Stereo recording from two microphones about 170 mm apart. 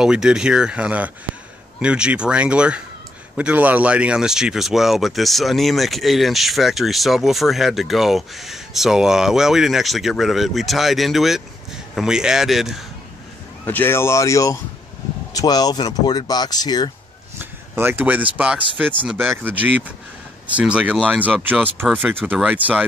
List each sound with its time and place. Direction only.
0.0 s speech: 5° right (ahead or behind)
13.7 s speech: 10° left (ahead or behind)
17.4 s speech: 10° right (ahead or behind)